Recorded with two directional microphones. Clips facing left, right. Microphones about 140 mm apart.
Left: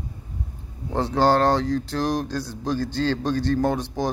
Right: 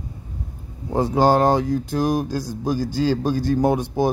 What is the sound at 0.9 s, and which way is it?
Speech, 10° right (ahead or behind).